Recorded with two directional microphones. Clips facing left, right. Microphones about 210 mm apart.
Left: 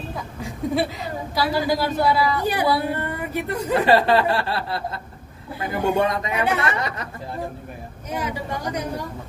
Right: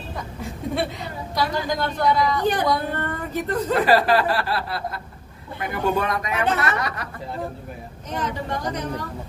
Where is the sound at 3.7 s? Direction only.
25° left (ahead or behind).